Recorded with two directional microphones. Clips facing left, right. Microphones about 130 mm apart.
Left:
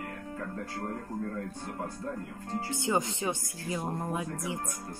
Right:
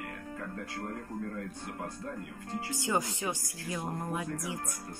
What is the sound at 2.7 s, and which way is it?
Speech, 25° left (ahead or behind).